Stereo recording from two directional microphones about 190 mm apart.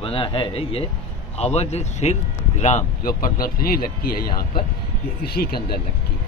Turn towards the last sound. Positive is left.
turn(degrees=55)  # may be behind; listen again after turning